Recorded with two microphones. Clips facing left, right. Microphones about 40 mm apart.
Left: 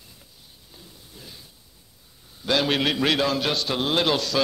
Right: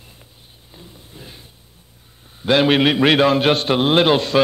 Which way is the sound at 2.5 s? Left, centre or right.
Right.